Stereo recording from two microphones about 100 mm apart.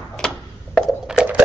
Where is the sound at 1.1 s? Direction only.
10° right (ahead or behind).